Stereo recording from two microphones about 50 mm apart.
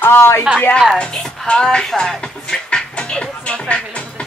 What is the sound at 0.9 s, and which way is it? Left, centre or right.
Speech, centre.